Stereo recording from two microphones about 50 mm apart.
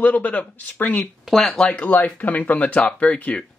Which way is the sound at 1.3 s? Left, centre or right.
Centre.